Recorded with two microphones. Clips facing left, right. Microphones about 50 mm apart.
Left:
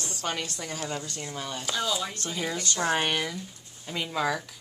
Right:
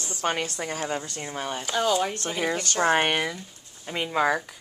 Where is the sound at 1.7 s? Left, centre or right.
Right.